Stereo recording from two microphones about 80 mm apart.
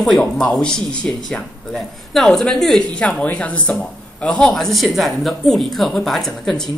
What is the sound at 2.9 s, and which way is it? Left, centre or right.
Speech, centre.